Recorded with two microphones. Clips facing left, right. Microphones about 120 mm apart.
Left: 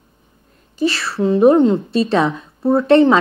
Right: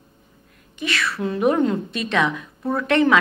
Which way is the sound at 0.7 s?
35° left (ahead or behind).